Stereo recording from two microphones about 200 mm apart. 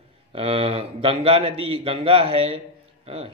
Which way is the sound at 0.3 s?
30° right (ahead or behind).